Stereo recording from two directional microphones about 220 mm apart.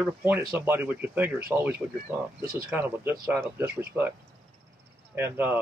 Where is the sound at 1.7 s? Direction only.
40° right (ahead or behind).